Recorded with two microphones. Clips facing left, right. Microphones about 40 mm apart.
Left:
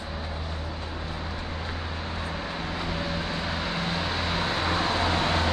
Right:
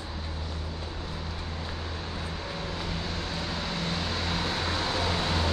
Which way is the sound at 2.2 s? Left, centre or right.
Left.